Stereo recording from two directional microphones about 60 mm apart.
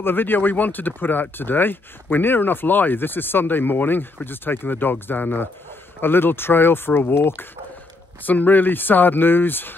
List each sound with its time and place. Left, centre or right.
0.0 s speech: left
8.2 s speech: left